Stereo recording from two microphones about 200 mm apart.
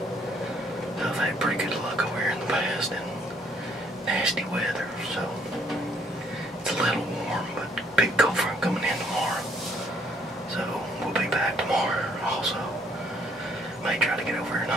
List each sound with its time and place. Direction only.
1.0 s whispering: centre (ahead or behind)
4.1 s whispering: centre (ahead or behind)
6.6 s a sound: centre (ahead or behind)
7.9 s speech: centre (ahead or behind)
11.1 s whispering: centre (ahead or behind)
13.8 s a sound: centre (ahead or behind)